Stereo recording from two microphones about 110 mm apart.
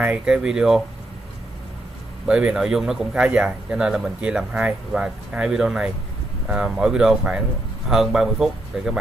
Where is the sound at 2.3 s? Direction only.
5° right (ahead or behind).